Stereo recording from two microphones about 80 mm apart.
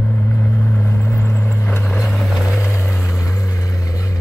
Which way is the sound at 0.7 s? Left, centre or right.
Left.